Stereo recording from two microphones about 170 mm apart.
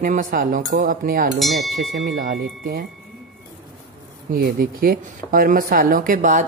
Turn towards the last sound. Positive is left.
turn(degrees=-50)  # may be behind; listen again after turning